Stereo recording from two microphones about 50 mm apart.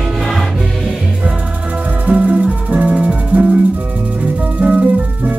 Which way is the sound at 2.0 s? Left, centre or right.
Right.